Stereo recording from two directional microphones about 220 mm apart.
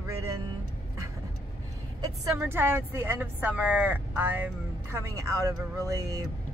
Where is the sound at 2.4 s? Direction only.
10° right (ahead or behind).